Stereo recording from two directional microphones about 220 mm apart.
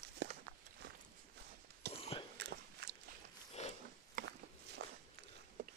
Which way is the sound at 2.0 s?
25° left (ahead or behind).